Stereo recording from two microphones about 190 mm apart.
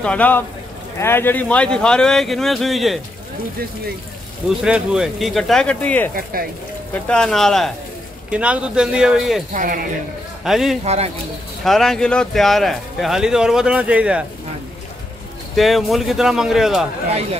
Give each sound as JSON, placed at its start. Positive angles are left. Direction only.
{"t": 0.0, "sound": "speech", "side_deg": 5}
{"t": 4.6, "sound": "speech", "side_deg": -5}
{"t": 9.5, "sound": "speech", "side_deg": -45}
{"t": 10.4, "sound": "speech", "side_deg": 0}
{"t": 10.8, "sound": "speech", "side_deg": -35}
{"t": 11.6, "sound": "speech", "side_deg": 0}
{"t": 15.5, "sound": "speech", "side_deg": 0}